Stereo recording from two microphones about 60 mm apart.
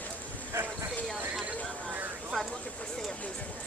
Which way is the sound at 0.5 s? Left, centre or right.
Right.